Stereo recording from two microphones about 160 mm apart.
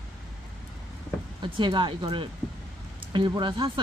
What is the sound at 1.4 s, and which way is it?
Speech, 30° right (ahead or behind).